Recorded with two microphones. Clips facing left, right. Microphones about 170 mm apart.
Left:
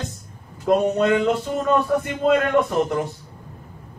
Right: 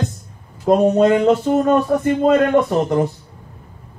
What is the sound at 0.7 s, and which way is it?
Speech, 35° right (ahead or behind).